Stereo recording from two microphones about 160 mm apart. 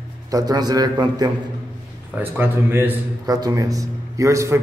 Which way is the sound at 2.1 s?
10° right (ahead or behind).